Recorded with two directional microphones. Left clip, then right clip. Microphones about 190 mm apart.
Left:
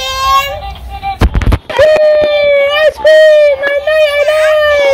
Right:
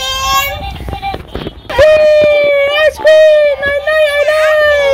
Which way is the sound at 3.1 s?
15° right (ahead or behind).